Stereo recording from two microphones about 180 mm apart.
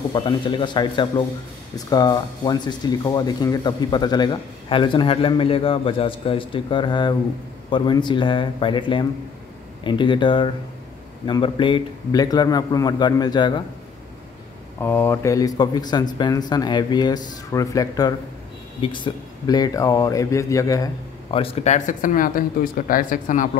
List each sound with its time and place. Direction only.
0.1 s speech: 25° left (ahead or behind)
14.8 s speech: 10° left (ahead or behind)
21.3 s speech: 35° left (ahead or behind)